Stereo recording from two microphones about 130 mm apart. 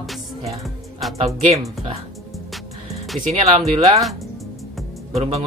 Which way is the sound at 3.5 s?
50° right (ahead or behind).